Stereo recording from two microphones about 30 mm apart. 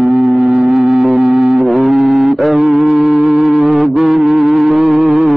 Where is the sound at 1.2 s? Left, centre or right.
Right.